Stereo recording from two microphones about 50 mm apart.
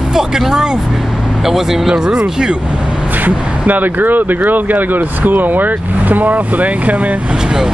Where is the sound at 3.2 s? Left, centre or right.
Right.